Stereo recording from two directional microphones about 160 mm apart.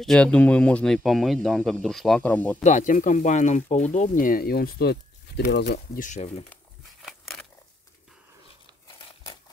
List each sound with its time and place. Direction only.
0.0 s speech: 5° left (ahead or behind)
2.6 s speech: 50° left (ahead or behind); by 6.0 s 90° left
6.0 s speech: 45° left (ahead or behind)
7.0 s a sound: centre (ahead or behind)